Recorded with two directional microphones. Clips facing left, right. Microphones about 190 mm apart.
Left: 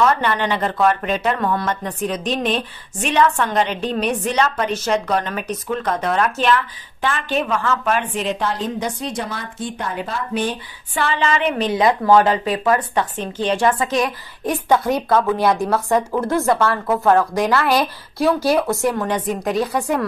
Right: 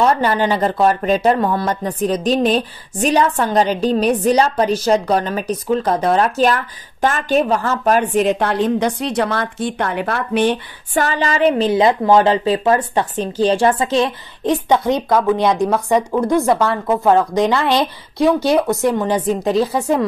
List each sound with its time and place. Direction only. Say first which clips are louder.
0.0 s speech: right 3 dB; 35° right (ahead or behind); by 10.6 s 70° right (ahead or behind)
11.0 s a woman's voice: right 3 dB; 40° right (ahead or behind)